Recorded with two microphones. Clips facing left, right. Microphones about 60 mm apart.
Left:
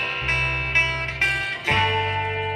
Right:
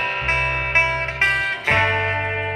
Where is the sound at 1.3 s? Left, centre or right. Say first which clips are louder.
Right 4 dB; right.